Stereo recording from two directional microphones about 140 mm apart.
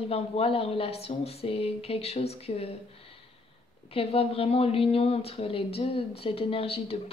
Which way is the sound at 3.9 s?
45° left (ahead or behind).